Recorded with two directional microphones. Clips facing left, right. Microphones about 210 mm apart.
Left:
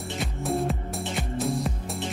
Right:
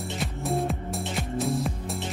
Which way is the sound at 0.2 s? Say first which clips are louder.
Left 1 dB; centre (ahead or behind).